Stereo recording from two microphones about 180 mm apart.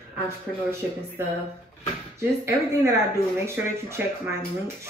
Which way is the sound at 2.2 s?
15° right (ahead or behind).